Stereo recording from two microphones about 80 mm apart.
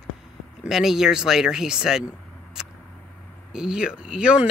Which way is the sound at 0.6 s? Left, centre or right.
Centre.